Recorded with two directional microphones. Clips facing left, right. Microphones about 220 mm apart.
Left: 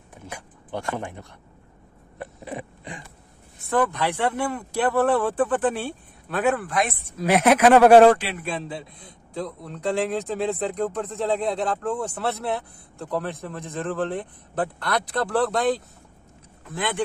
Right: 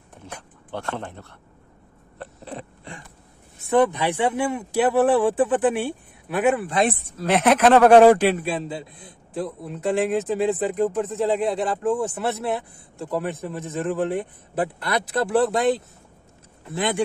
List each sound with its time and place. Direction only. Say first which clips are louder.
0.3 s speech: left 1 dB; 15° left (ahead or behind)
2.1 s a sound: left 2 dB; 15° left (ahead or behind)
3.7 s speech: right 4 dB; 20° right (ahead or behind)
6.6 s speech: right 4 dB; 30° right (ahead or behind)
7.1 s speech: left 4 dB; 10° left (ahead or behind)